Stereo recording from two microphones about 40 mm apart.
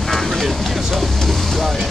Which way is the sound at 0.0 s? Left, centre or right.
Centre.